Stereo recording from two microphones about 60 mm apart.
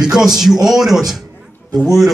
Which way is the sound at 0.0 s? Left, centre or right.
Centre.